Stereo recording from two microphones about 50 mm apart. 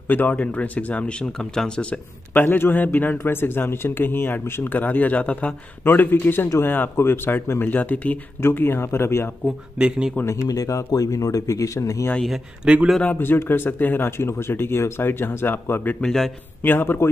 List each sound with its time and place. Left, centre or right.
0.1 s speech: left
1.2 s speech: centre
2.3 s a man's voice: left
5.9 s a man's voice: left
7.6 s speech: left
8.4 s speech: left
9.8 s speech: centre
10.2 s speech: left
12.6 s a man's voice: centre
13.2 s a man's voice: left